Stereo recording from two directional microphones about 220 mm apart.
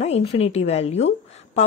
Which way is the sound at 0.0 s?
30° left (ahead or behind).